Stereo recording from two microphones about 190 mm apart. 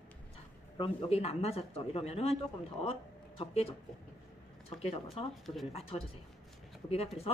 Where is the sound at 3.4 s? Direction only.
30° left (ahead or behind).